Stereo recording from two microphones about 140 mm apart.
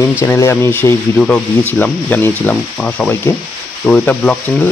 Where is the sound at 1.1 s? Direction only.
5° left (ahead or behind).